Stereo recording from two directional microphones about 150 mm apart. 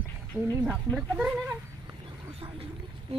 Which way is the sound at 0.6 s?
Centre (ahead or behind).